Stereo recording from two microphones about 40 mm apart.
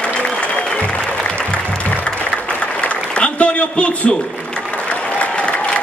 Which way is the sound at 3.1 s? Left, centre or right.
Left.